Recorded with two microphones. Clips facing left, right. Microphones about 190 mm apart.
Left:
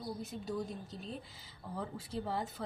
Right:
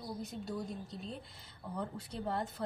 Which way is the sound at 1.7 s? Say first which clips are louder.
Left 1 dB; 5° left (ahead or behind).